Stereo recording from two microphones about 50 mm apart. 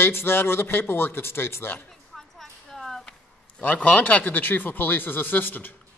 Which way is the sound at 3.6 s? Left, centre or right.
Left.